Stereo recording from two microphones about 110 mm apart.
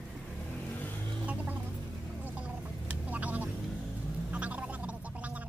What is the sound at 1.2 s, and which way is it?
Music, 15° right (ahead or behind).